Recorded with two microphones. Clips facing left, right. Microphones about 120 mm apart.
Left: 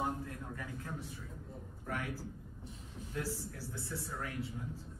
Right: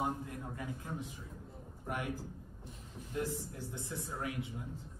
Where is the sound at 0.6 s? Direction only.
15° right (ahead or behind).